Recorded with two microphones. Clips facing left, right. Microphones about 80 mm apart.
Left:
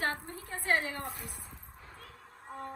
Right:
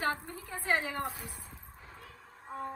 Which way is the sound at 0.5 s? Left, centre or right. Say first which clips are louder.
Left 1 dB; centre.